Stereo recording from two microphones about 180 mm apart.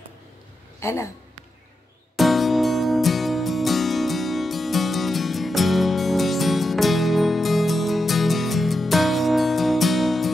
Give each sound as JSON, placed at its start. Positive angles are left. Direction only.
{"t": 0.7, "sound": "speech", "side_deg": 15}
{"t": 2.1, "sound": "music", "side_deg": 0}